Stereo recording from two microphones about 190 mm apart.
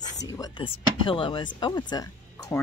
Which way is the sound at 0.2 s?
20° left (ahead or behind).